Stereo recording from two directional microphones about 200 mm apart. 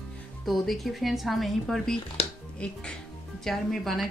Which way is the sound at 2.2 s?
30° left (ahead or behind).